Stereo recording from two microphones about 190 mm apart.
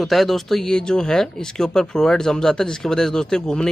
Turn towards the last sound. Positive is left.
turn(degrees=5)  # may be behind; listen again after turning